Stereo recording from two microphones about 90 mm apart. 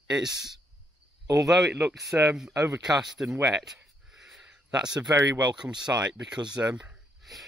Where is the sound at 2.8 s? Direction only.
5° right (ahead or behind).